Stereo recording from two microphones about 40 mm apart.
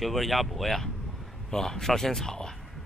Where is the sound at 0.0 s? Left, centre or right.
Centre.